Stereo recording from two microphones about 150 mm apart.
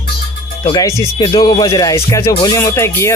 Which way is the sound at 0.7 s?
20° left (ahead or behind).